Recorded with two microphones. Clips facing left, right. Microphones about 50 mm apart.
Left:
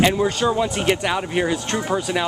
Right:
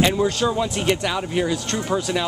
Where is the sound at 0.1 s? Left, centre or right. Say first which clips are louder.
Left 1 dB; centre.